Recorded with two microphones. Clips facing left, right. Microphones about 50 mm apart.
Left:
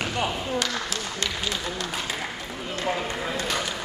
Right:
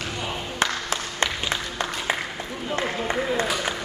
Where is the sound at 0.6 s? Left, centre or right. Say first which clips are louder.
Right 3 dB; right.